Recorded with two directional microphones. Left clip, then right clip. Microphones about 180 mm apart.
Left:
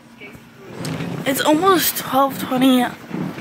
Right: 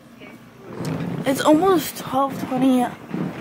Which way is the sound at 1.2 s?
25° right (ahead or behind).